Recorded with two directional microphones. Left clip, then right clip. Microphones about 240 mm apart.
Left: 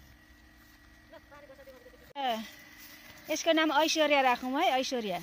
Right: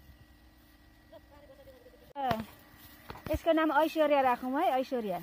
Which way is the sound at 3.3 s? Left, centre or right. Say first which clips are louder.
Left 1 dB; centre.